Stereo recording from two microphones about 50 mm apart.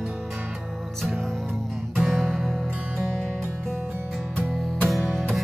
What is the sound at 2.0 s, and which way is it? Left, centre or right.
Music, centre.